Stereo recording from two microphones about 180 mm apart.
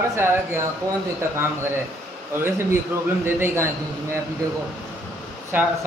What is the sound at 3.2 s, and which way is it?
Speech, 10° right (ahead or behind).